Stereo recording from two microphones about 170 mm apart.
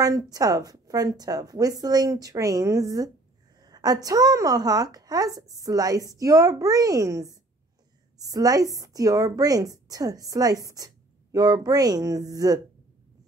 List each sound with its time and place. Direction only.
0.0 s a woman's voice: 20° right (ahead or behind)